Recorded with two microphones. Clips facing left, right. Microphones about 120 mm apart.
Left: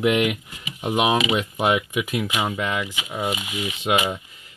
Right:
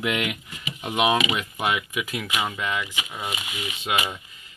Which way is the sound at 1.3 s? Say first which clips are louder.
Left 5 dB; 30° left (ahead or behind).